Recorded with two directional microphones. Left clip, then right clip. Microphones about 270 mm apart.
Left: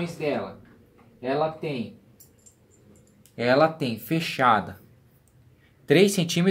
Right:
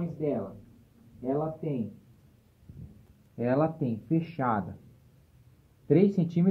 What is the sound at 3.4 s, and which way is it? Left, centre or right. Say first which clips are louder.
Speech: left 7 dB; centre.